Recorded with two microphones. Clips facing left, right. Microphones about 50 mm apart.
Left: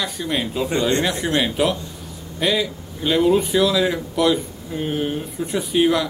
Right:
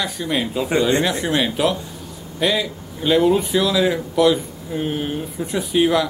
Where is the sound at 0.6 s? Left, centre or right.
Centre.